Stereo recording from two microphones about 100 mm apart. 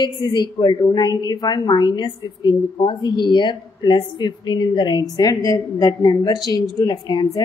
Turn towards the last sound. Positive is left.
turn(degrees=45)  # may be behind; listen again after turning